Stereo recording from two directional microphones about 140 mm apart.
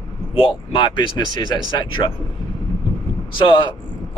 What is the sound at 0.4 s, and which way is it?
Speech, 35° left (ahead or behind).